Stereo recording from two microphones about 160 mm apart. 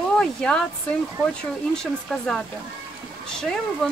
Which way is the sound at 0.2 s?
5° left (ahead or behind).